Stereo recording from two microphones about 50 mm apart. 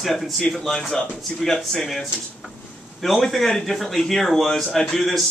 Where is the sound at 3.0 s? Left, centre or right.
Centre.